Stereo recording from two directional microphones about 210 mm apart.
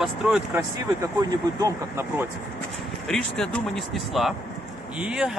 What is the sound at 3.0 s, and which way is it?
Speech, 5° left (ahead or behind).